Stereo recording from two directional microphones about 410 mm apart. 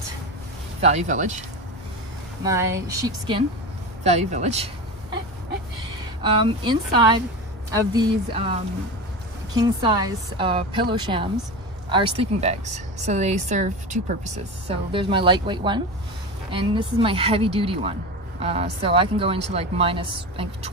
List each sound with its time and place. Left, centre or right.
0.7 s speech: centre
2.4 s speech: centre
6.2 s speech: centre